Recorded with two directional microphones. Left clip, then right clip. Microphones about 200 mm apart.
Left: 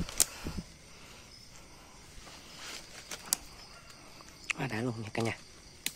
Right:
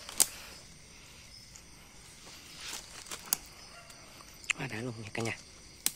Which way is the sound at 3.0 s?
Centre (ahead or behind).